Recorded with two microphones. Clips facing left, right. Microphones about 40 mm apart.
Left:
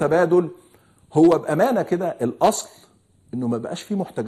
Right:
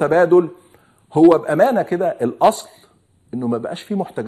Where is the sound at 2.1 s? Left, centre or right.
Right.